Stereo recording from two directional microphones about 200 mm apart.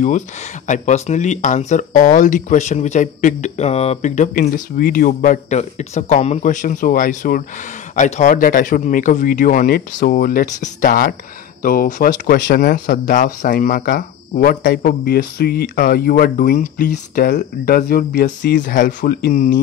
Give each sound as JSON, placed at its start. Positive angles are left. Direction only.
{"t": 0.7, "sound": "speech", "side_deg": 35}
{"t": 18.6, "sound": "speech", "side_deg": 40}